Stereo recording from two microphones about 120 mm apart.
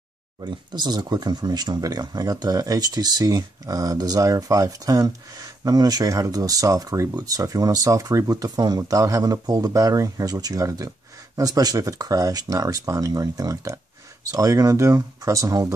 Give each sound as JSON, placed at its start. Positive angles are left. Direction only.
{"t": 0.4, "sound": "speech", "side_deg": -35}